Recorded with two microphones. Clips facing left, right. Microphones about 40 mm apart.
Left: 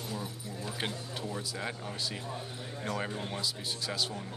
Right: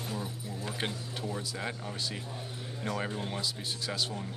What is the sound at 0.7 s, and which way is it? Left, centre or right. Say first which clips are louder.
Speech: left 1 dB; centre.